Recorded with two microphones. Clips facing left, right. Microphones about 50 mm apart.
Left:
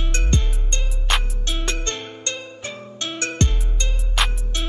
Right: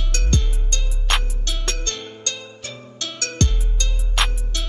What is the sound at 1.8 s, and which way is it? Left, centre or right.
Music, left.